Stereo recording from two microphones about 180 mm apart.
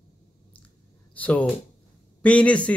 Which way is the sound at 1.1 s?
10° left (ahead or behind).